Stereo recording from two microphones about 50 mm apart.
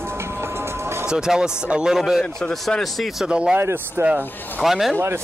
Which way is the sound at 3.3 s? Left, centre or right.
Centre.